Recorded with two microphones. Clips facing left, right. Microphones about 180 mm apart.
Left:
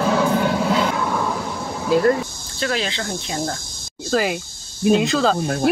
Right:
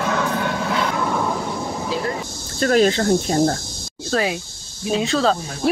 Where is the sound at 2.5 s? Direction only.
45° right (ahead or behind).